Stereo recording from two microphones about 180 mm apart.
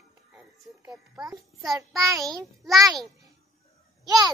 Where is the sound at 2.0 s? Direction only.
20° right (ahead or behind).